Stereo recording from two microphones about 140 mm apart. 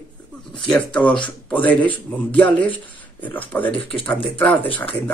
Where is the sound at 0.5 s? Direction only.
5° left (ahead or behind).